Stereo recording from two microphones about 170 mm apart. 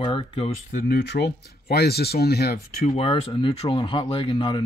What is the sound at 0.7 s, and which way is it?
Speech, 60° left (ahead or behind).